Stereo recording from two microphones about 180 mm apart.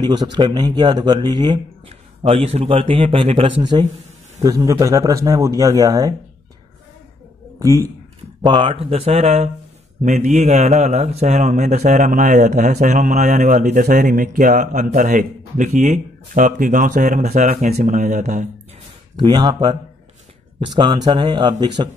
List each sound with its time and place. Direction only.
0.0 s speech: 25° right (ahead or behind)
4.4 s speech: 20° right (ahead or behind)
7.5 s a man's voice: 15° right (ahead or behind); by 18.5 s 40° right (ahead or behind)
19.1 s speech: 20° right (ahead or behind)